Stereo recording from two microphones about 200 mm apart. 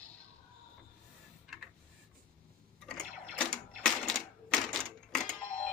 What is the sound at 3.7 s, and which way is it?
Typewriter, centre (ahead or behind).